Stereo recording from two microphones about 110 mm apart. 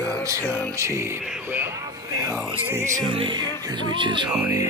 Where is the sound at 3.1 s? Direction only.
50° right (ahead or behind).